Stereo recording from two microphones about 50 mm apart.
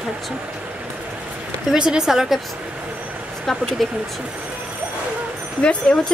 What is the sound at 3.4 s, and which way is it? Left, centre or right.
Speech, centre.